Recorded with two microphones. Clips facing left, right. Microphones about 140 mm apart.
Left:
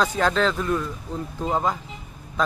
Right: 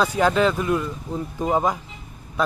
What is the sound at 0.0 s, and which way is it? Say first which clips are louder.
A man's voice: right 3 dB; 10° right (ahead or behind).